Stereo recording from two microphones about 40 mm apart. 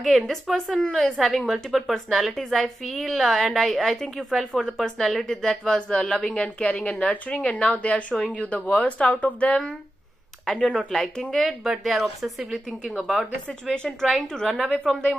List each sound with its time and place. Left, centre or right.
0.0 s a woman's voice: centre
4.8 s speech: centre
5.8 s a woman's voice: left
7.1 s speech: left
10.4 s speech: centre
11.6 s a woman's voice: centre